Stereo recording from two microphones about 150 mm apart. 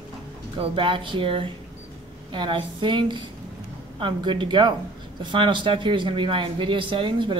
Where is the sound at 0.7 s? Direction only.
35° right (ahead or behind).